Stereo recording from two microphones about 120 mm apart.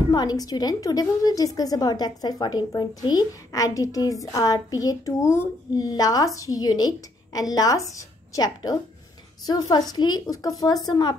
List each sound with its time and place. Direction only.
0.1 s a woman's voice: 35° left (ahead or behind)